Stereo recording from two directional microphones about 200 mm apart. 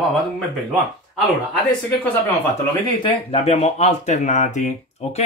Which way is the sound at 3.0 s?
30° left (ahead or behind).